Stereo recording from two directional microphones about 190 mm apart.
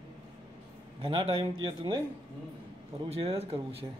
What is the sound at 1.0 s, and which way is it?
Speech, 30° right (ahead or behind).